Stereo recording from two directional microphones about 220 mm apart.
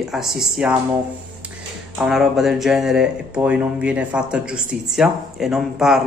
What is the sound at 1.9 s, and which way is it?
A man's voice, centre (ahead or behind).